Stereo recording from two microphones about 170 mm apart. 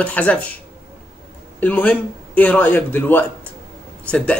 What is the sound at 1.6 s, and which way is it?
A man's voice, 10° left (ahead or behind).